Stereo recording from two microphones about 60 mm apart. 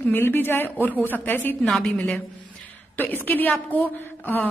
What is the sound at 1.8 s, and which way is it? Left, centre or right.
A woman's voice, left.